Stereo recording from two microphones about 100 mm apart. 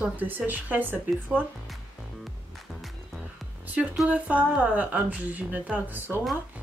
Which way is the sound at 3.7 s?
10° right (ahead or behind).